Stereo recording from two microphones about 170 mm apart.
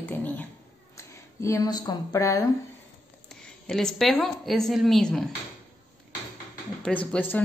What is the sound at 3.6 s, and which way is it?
A woman's voice, 5° left (ahead or behind).